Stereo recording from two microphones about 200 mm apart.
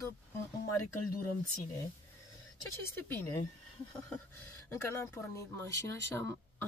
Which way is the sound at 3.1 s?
10° left (ahead or behind).